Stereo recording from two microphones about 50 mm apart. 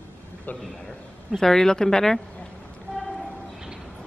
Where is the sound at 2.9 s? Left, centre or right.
Centre.